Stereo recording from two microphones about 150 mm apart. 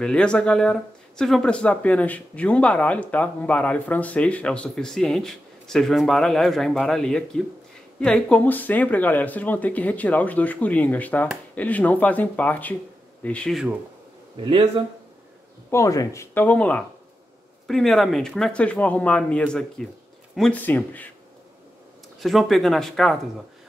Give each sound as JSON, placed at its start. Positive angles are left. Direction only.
{"t": 0.0, "sound": "speech", "side_deg": 5}
{"t": 14.3, "sound": "speech", "side_deg": -35}
{"t": 15.7, "sound": "speech", "side_deg": 20}
{"t": 22.2, "sound": "speech", "side_deg": 0}